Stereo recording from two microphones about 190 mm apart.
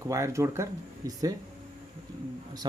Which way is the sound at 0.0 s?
15° right (ahead or behind).